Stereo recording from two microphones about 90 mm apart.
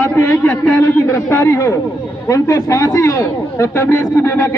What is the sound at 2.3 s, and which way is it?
Speech, 40° left (ahead or behind).